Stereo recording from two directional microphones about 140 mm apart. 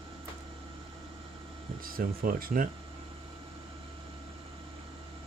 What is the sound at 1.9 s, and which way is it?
Speech, 90° right.